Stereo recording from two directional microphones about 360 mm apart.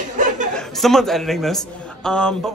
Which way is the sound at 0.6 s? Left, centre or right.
Centre.